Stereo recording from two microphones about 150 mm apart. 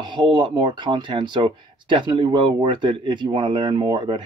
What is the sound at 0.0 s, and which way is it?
Speech, 30° right (ahead or behind).